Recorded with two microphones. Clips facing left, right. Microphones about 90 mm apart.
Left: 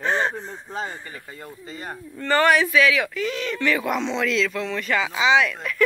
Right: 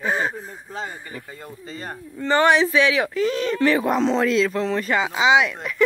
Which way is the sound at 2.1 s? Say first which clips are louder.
Right 1 dB; 20° right (ahead or behind).